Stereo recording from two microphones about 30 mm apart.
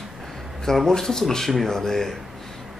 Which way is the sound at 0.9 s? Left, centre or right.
Centre.